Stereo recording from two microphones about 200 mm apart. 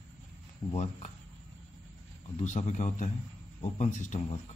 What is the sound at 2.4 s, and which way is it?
Speech, 35° left (ahead or behind).